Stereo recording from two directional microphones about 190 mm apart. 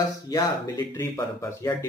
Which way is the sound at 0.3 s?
20° left (ahead or behind).